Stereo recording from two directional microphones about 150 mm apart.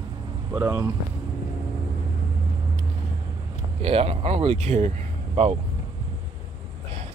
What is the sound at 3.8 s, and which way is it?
Speech, 40° right (ahead or behind).